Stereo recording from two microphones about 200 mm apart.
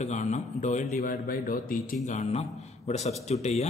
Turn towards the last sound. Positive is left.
turn(degrees=35)  # may be behind; listen again after turning